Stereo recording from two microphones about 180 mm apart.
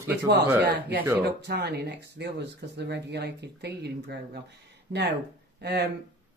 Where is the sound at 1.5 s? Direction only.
65° right (ahead or behind).